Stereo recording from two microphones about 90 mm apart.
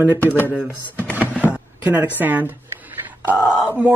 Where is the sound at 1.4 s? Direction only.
15° right (ahead or behind).